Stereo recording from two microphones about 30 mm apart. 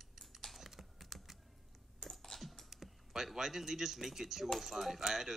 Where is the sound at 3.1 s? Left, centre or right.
Centre.